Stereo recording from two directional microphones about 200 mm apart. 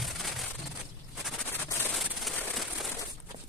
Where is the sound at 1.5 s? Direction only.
10° left (ahead or behind).